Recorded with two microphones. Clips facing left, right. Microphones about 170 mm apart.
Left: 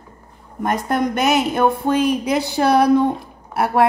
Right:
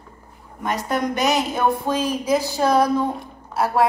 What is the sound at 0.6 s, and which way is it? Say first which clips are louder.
A woman's voice: left 4 dB; 50° left (ahead or behind).